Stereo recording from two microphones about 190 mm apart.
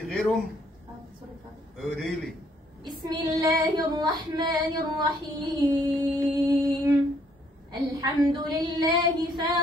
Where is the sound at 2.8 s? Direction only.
20° right (ahead or behind).